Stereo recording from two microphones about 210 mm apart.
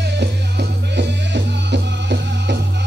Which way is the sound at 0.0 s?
55° right (ahead or behind).